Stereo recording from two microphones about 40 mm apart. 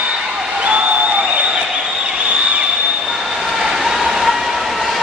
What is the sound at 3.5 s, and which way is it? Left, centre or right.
Vehicle, centre.